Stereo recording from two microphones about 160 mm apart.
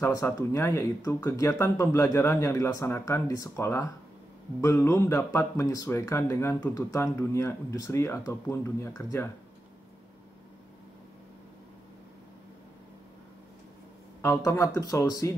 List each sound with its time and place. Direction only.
0.0 s speech: 20° left (ahead or behind)
14.2 s a man's voice: 15° left (ahead or behind)